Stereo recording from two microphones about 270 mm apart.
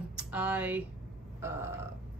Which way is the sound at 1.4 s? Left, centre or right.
Centre.